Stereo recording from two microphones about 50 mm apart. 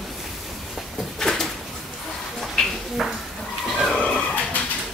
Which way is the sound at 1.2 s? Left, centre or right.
Centre.